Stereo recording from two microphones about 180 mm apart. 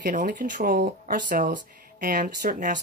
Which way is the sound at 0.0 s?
50° right (ahead or behind).